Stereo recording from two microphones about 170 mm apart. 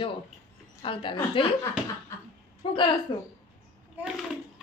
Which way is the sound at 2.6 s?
30° left (ahead or behind).